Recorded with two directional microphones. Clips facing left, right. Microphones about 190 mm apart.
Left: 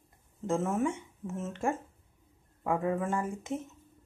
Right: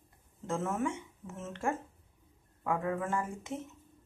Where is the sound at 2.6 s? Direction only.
25° left (ahead or behind).